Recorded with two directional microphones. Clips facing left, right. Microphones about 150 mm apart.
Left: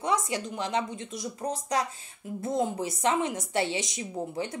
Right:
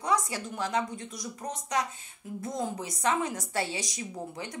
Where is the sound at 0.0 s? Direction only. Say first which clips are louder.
Left 1 dB; 25° left (ahead or behind).